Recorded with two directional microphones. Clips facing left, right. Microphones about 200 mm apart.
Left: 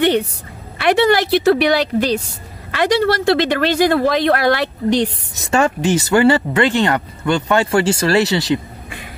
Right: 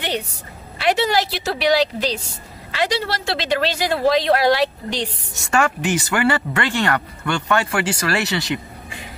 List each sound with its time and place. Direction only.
0.0 s a sound: 55° left (ahead or behind)
0.7 s a woman's voice: 55° left (ahead or behind)
5.4 s speech: 20° left (ahead or behind)